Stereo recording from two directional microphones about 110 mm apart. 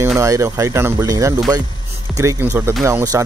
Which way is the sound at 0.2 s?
30° right (ahead or behind).